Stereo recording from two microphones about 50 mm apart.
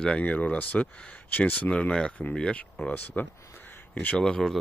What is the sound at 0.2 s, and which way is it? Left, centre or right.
Speech, left.